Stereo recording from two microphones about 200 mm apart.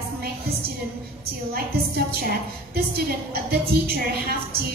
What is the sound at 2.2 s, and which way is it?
A woman's voice, 50° right (ahead or behind).